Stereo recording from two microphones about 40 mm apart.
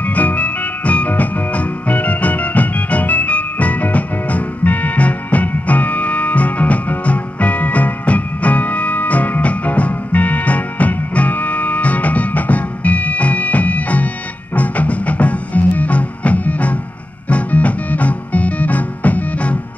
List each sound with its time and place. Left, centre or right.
0.0 s music: left